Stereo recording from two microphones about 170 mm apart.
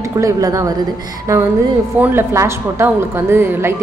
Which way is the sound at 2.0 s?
15° right (ahead or behind).